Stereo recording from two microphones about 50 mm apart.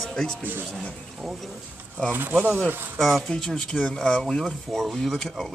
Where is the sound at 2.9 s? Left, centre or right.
Centre.